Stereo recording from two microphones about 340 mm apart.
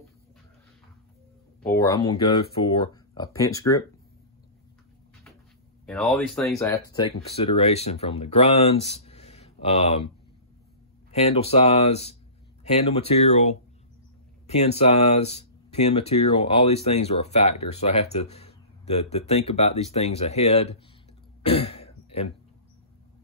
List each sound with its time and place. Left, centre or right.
1.6 s speech: centre
5.9 s speech: centre
21.4 s throat clearing: centre